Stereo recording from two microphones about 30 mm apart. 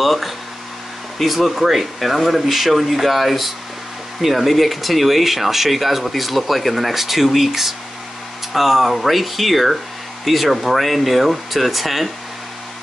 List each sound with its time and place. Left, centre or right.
0.0 s speech: centre